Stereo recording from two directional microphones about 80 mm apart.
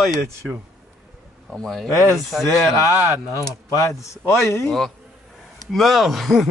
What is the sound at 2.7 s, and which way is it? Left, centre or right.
Speech, left.